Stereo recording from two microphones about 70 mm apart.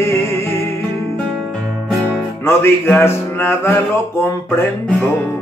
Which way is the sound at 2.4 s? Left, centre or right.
Left.